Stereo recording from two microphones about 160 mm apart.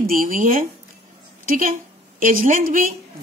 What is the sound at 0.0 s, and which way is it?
Speech, 60° right (ahead or behind).